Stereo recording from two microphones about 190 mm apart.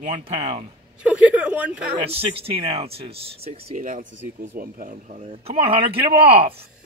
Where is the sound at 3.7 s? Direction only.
45° right (ahead or behind).